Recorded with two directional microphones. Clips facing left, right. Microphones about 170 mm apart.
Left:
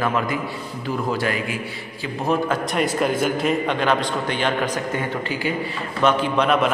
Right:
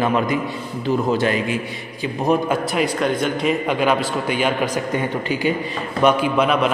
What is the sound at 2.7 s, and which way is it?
A man's voice, centre (ahead or behind).